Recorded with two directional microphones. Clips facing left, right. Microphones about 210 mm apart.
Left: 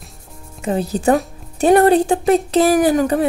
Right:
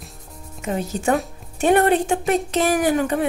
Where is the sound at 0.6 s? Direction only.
35° left (ahead or behind).